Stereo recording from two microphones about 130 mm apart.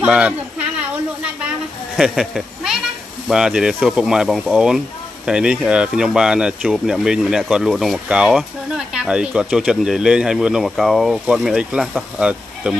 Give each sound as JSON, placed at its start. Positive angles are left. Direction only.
{"t": 0.0, "sound": "speech", "side_deg": -10}
{"t": 2.0, "sound": "speech", "side_deg": -5}